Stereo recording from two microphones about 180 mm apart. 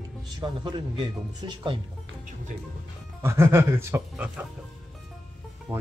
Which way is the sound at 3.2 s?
15° right (ahead or behind).